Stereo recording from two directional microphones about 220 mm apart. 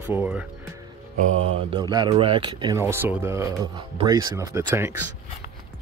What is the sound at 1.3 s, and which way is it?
Mantra, 30° right (ahead or behind).